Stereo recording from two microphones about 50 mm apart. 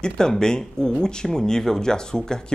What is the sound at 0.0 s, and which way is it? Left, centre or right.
Speech, centre.